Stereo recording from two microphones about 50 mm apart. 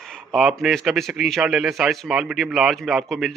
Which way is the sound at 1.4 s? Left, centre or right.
Centre.